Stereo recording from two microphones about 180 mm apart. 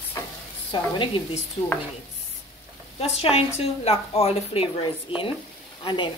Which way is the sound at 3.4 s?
35° left (ahead or behind).